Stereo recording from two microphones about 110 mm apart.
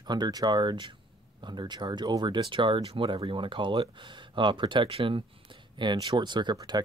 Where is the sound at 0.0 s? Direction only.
40° right (ahead or behind).